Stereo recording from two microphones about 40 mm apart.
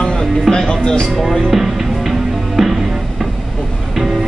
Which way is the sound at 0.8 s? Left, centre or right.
Left.